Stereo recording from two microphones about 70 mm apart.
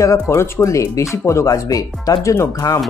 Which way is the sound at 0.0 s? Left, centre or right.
Left.